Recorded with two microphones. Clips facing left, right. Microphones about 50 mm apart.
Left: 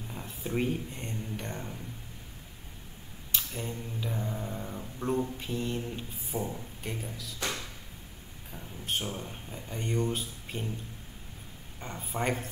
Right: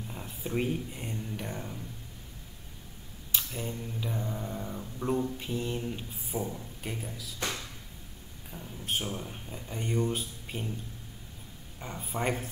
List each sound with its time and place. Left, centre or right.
0.1 s a sound: centre
0.6 s mantra: centre
3.4 s mantra: centre
8.5 s mantra: centre
11.8 s mantra: centre